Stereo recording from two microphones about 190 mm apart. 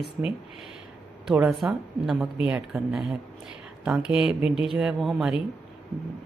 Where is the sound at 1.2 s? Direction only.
5° right (ahead or behind).